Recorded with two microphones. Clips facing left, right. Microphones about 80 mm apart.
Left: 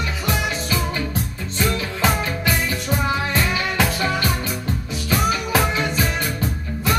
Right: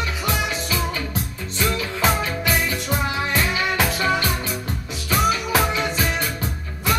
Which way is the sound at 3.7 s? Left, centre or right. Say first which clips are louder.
Left 1 dB; left.